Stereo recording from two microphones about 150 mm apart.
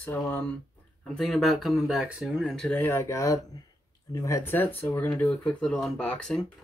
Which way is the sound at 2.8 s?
20° left (ahead or behind).